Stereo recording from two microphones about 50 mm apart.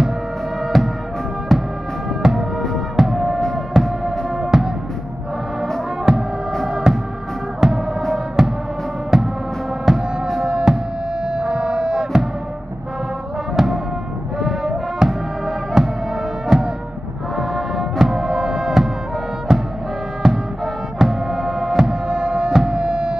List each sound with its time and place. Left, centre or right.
0.7 s music: centre
3.3 s music: centre
3.7 s music: centre
6.1 s music: centre
13.6 s music: centre
22.0 s music: centre